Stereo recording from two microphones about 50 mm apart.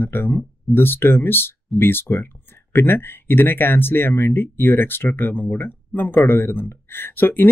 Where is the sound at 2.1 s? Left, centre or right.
Left.